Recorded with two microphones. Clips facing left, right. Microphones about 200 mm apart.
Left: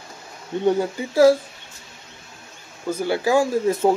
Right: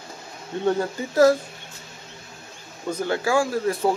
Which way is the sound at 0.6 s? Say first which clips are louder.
Left 3 dB; 10° left (ahead or behind).